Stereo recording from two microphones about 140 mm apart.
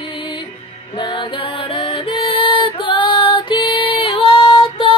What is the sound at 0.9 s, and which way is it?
Music, 35° left (ahead or behind).